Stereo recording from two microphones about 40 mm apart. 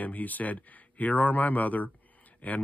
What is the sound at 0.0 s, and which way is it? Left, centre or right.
Speech, left.